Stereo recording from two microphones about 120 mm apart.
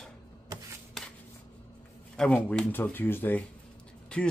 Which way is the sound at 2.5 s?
15° left (ahead or behind).